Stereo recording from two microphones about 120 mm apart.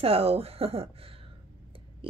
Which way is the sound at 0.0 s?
55° right (ahead or behind).